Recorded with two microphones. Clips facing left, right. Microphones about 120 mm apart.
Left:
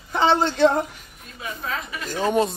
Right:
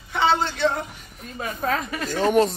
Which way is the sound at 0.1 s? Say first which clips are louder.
Left 2 dB; 35° left (ahead or behind).